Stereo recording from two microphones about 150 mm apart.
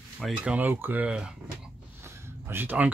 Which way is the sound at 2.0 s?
15° right (ahead or behind).